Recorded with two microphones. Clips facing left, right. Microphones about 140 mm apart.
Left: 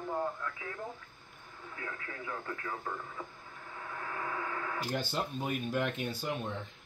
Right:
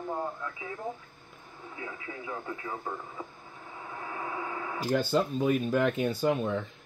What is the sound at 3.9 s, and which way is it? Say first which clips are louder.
Radio: right 2 dB; 15° right (ahead or behind).